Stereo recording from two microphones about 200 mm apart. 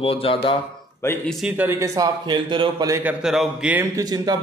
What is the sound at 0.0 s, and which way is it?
Speech, 25° left (ahead or behind).